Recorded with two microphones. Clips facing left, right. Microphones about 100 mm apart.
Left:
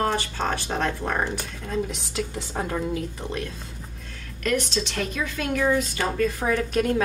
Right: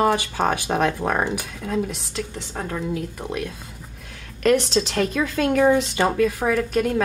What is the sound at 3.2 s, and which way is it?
Speech, 5° right (ahead or behind).